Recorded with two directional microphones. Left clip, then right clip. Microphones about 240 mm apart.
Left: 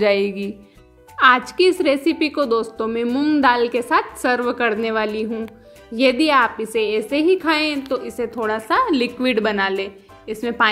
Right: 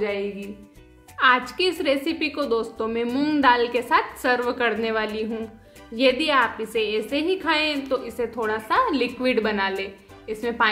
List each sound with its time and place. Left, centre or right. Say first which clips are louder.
0.0 s speech: left 9 dB; left
1.1 s a woman's voice: left 5 dB; left